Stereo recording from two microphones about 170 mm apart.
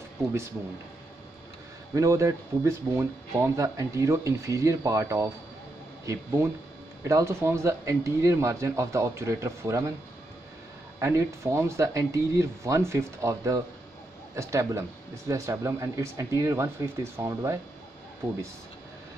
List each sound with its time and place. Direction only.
2.0 s speech: 20° right (ahead or behind)
11.0 s speech: 15° right (ahead or behind)